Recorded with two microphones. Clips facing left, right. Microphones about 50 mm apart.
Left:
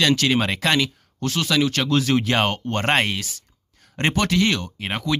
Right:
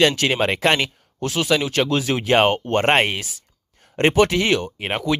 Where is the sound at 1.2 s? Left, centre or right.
Centre.